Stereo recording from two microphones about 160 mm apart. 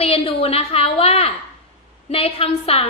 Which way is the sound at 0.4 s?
40° left (ahead or behind).